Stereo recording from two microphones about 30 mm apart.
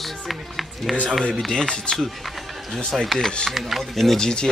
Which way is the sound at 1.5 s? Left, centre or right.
Centre.